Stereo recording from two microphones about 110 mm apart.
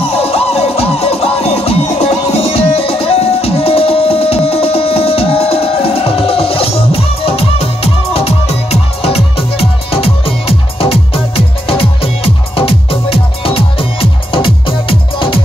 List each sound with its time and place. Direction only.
0.1 s music: 60° left (ahead or behind)